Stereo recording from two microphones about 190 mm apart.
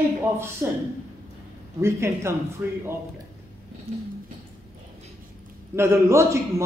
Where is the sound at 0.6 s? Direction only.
15° right (ahead or behind).